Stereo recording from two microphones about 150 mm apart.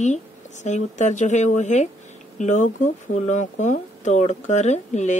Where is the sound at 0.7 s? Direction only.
50° left (ahead or behind).